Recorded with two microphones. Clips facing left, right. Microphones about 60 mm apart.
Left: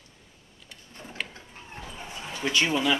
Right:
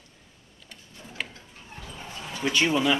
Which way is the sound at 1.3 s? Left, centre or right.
Left.